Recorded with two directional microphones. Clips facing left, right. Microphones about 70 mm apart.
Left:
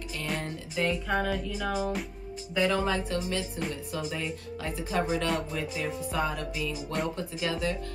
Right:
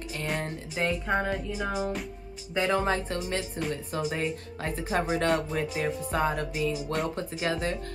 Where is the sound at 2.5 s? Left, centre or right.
Right.